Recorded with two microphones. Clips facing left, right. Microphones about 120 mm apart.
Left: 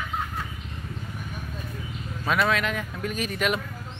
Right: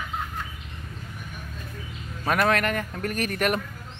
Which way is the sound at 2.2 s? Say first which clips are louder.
Right 2 dB; 55° right (ahead or behind).